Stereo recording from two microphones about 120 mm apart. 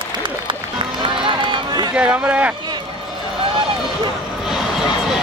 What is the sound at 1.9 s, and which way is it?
Speech, 10° right (ahead or behind).